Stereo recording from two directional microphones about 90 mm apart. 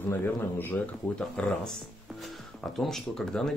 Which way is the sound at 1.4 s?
10° left (ahead or behind).